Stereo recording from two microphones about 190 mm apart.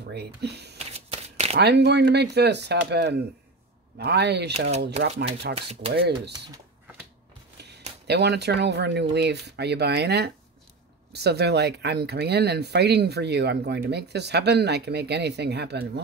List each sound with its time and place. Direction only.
0.1 s speech: 60° right (ahead or behind)
0.7 s a sound: 35° right (ahead or behind)
1.6 s speech: 60° right (ahead or behind)
4.6 s speech: 35° right (ahead or behind)
5.0 s speech: 70° right (ahead or behind)
5.7 s speech: 30° right (ahead or behind)
5.9 s speech: 60° right (ahead or behind)
8.1 s speech: 60° right (ahead or behind)